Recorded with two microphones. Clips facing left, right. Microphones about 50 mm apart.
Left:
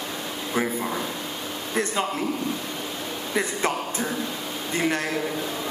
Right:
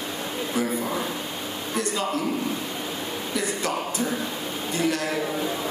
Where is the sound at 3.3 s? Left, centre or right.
Left.